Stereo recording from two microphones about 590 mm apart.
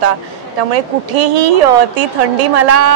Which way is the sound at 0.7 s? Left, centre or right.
Right.